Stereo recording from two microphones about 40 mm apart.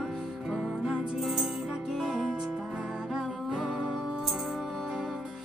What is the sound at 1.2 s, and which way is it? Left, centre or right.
Music, centre.